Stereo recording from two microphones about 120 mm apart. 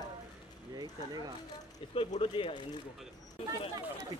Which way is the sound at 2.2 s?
45° left (ahead or behind).